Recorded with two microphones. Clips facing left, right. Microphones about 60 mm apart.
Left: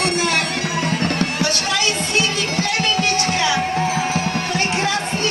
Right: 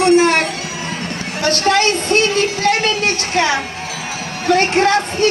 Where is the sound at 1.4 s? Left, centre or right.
Right.